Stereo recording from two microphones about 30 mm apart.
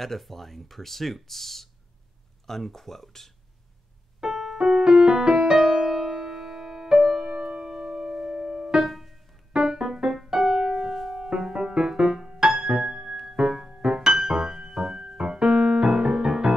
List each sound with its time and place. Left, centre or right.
0.0 s speech: centre
4.2 s keyboard: centre
4.6 s music: centre
8.8 s music: centre
9.6 s keyboard: centre
10.2 s music: right
10.9 s music: centre
11.1 s music: centre
12.7 s music: right